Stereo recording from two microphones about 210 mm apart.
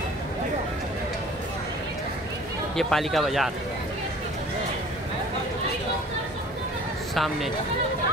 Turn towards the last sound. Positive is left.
turn(degrees=0)  # may be behind; listen again after turning